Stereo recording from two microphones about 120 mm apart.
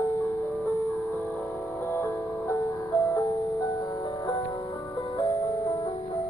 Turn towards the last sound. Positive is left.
turn(degrees=30)  # may be behind; listen again after turning